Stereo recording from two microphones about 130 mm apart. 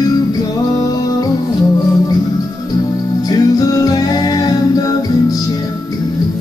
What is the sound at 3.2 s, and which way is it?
Music, 30° left (ahead or behind).